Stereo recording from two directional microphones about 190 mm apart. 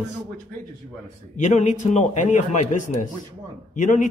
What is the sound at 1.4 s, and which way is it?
A man's voice, 40° left (ahead or behind).